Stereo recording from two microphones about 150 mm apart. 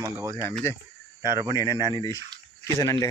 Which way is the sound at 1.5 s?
25° left (ahead or behind).